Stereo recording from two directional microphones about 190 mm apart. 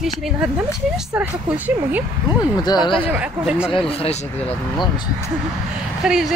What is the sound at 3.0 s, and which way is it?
Speech, 5° right (ahead or behind).